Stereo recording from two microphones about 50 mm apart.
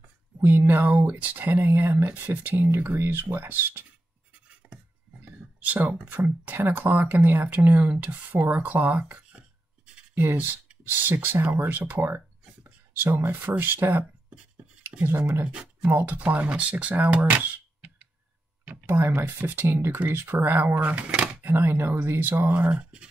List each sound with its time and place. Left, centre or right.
0.4 s speech: right
1.6 s speech: right
2.2 s speech: right
4.6 s cutlery: right
5.2 s speech: right
14.8 s a sound: right
15.0 s speech: right
15.4 s speech: right
15.9 s speech: right
18.9 s speech: right
21.4 s speech: right